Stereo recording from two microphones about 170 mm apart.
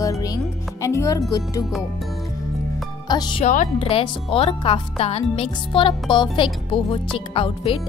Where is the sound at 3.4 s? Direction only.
45° left (ahead or behind).